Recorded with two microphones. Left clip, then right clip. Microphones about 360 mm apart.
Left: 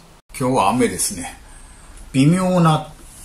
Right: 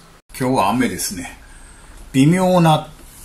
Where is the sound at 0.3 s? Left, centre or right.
Centre.